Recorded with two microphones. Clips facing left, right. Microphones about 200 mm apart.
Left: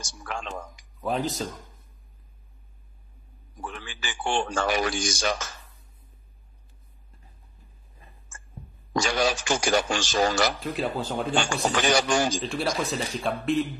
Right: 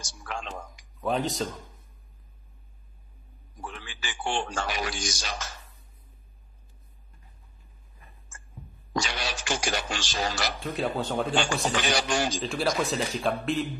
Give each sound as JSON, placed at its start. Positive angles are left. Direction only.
{"t": 1.0, "sound": "speech", "side_deg": 0}
{"t": 3.8, "sound": "a man's voice", "side_deg": 50}
{"t": 9.0, "sound": "speech", "side_deg": 45}
{"t": 10.6, "sound": "speech", "side_deg": 0}
{"t": 11.7, "sound": "speech", "side_deg": 45}
{"t": 12.4, "sound": "speech", "side_deg": 0}